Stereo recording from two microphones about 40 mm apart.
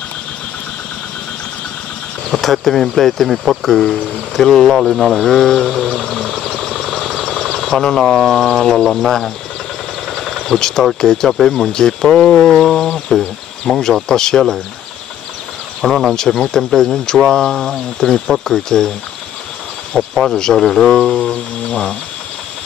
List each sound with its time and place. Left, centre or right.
2.3 s speech: centre
4.7 s speech: centre
6.0 s speech: centre
6.8 s vehicle: centre
7.8 s speech: centre
8.1 s speech: centre
10.4 s speech: centre
12.6 s speech: centre
15.8 s speech: centre
19.9 s music: left
20.3 s speech: centre
21.2 s music: left